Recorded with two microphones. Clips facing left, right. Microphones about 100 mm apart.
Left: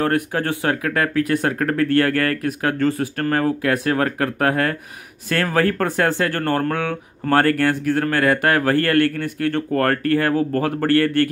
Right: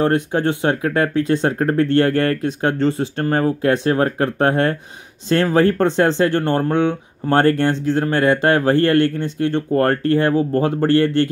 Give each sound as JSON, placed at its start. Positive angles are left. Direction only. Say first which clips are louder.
{"t": 0.0, "sound": "speech", "louder": "right 3 dB", "side_deg": -25}